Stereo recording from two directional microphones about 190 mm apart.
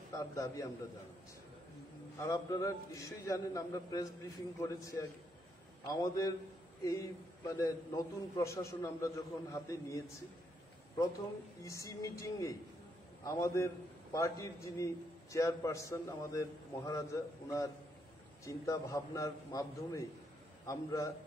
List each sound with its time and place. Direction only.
0.1 s a man's voice: 15° left (ahead or behind)
2.1 s a man's voice: 15° left (ahead or behind)
11.6 s a man's voice: 15° left (ahead or behind)